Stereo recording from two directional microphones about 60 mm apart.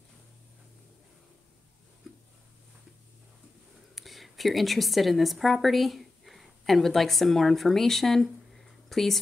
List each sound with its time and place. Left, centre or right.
3.9 s a woman's voice: centre